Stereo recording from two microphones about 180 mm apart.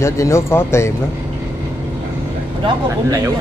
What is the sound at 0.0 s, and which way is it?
Speech, 15° left (ahead or behind).